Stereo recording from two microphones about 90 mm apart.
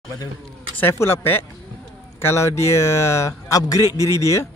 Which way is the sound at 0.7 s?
25° left (ahead or behind).